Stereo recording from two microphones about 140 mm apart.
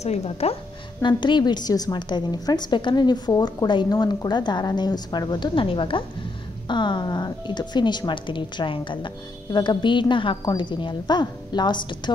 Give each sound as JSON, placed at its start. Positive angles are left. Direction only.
{"t": 0.0, "sound": "a woman's voice", "side_deg": 50}
{"t": 1.0, "sound": "speech", "side_deg": 35}